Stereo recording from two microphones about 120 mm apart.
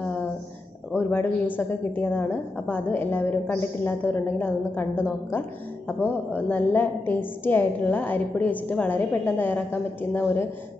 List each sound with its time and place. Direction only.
0.9 s a woman's voice: 15° left (ahead or behind)